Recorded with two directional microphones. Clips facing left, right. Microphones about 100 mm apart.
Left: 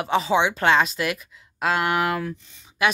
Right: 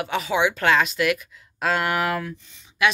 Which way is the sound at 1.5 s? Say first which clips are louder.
Left 1 dB; 15° left (ahead or behind).